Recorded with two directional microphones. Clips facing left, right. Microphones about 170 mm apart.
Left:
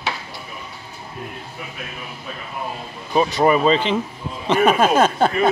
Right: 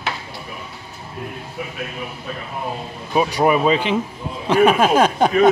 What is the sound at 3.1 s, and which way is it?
Speech, 10° right (ahead or behind).